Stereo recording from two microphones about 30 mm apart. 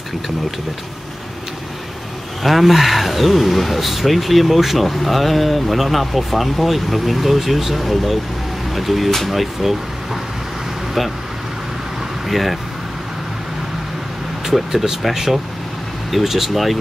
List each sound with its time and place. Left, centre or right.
2.4 s speech: centre
12.3 s speech: centre
14.4 s speech: centre
15.1 s speech: centre